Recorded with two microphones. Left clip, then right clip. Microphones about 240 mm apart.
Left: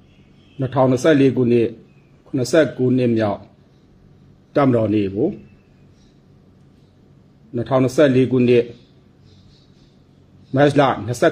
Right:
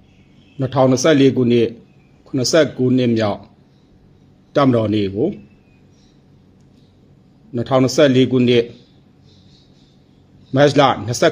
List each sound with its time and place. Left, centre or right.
0.6 s a man's voice: right
4.5 s a man's voice: right
7.5 s a man's voice: right
10.5 s a man's voice: right